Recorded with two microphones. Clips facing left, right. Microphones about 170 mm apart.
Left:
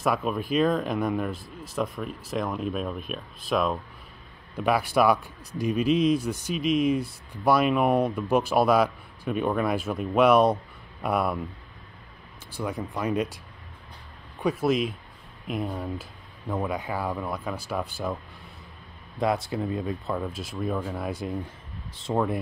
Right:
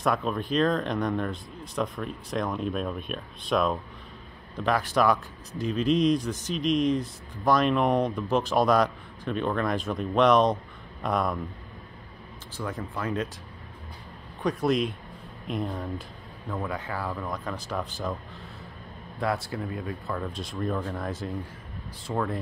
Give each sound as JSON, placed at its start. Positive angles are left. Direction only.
{"t": 0.0, "sound": "speech", "side_deg": 5}
{"t": 12.5, "sound": "speech", "side_deg": 10}
{"t": 14.4, "sound": "speech", "side_deg": 5}
{"t": 16.4, "sound": "speech", "side_deg": 15}
{"t": 19.1, "sound": "speech", "side_deg": 20}
{"t": 20.3, "sound": "speech", "side_deg": 5}